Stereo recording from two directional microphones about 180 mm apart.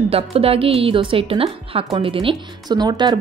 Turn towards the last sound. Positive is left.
turn(degrees=-25)  # may be behind; listen again after turning